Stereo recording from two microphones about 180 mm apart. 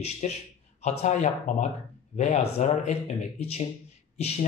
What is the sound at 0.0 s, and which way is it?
Speech, 35° left (ahead or behind).